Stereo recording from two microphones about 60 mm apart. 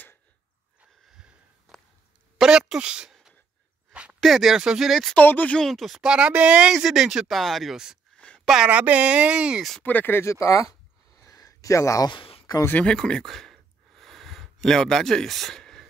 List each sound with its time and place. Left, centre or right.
1.7 s a sound: centre
2.3 s speech: centre
3.9 s a sound: centre
4.2 s speech: centre
5.1 s speech: left
5.7 s speech: centre
6.1 s speech: centre
6.7 s speech: centre
8.6 s speech: right
9.8 s speech: left
10.2 s a sound: left
12.7 s a sound: centre